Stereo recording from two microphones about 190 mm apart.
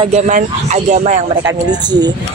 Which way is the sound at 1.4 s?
20° right (ahead or behind).